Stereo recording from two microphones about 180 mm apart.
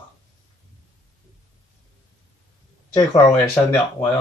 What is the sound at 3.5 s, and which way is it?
Speech, 10° left (ahead or behind).